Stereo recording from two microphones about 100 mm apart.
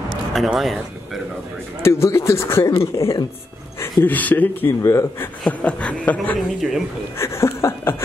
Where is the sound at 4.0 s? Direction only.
15° left (ahead or behind).